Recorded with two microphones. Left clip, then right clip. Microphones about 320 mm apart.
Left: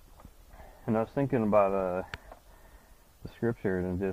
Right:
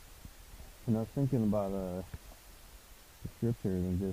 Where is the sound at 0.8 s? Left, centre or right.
Centre.